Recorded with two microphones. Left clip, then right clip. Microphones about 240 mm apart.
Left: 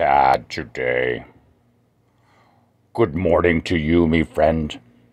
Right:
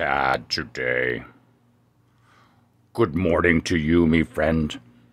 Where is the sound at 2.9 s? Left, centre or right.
Centre.